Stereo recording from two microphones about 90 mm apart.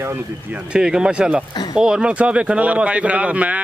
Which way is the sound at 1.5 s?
50° left (ahead or behind).